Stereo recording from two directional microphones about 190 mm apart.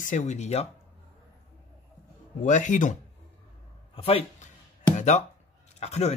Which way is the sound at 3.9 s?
30° left (ahead or behind).